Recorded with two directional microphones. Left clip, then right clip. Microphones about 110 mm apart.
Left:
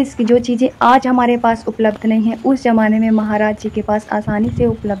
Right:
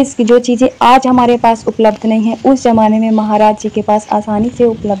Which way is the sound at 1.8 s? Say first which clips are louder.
Right 6 dB; 25° right (ahead or behind).